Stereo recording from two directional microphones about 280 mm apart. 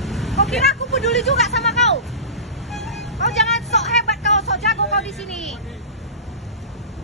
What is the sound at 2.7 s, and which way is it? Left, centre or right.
Music, centre.